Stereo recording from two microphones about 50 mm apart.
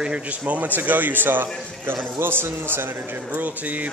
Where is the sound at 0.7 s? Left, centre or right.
Right.